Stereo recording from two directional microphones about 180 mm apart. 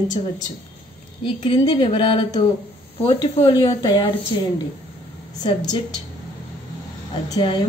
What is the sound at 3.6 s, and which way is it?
Speech, 25° left (ahead or behind).